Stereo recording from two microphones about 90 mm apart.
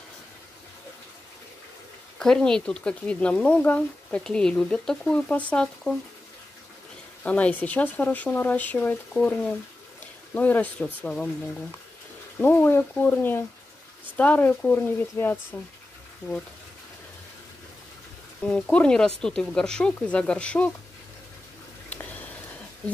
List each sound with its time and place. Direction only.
2.1 s speech: 10° left (ahead or behind)
7.2 s speech: 15° left (ahead or behind)
12.4 s speech: 25° left (ahead or behind)
15.2 s speech: 30° left (ahead or behind)
15.5 s speech: 20° left (ahead or behind)
18.5 s speech: 10° left (ahead or behind)